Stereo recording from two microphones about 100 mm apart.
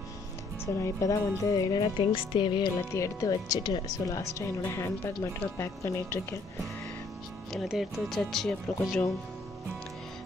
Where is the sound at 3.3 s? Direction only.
45° left (ahead or behind); by 6.4 s 25° left (ahead or behind).